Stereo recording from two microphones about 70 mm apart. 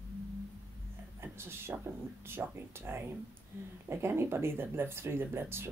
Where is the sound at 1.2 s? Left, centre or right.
Right.